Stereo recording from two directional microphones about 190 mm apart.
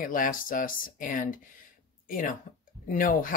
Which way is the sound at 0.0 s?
45° left (ahead or behind).